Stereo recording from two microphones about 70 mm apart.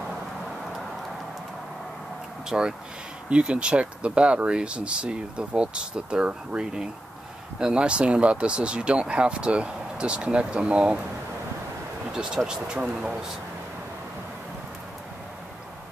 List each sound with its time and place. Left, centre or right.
2.5 s speech: centre
12.1 s speech: centre